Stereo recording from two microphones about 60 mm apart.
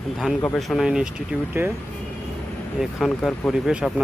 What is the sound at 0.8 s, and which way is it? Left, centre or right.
Speech, centre.